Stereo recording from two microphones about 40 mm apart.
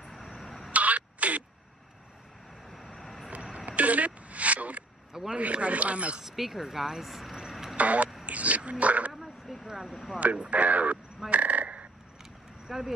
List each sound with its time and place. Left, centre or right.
0.0 s a sound: centre
0.7 s a sound: right
2.6 s vehicle: centre
3.5 s a sound: right
5.4 s speech: right
6.2 s speech: centre
7.7 s speech: right
9.1 s a sound: centre
9.7 s speech: centre
10.1 s speech: right
11.2 s frog: right
12.6 s speech: centre